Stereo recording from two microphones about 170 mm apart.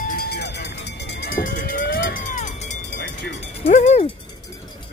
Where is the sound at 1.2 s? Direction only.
55° left (ahead or behind).